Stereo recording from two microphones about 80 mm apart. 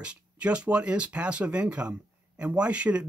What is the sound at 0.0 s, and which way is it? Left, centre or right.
Speech, centre.